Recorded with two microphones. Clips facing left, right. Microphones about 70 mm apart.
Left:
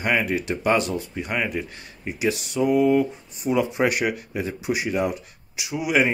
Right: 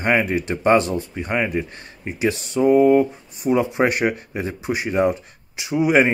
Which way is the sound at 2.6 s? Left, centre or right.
Right.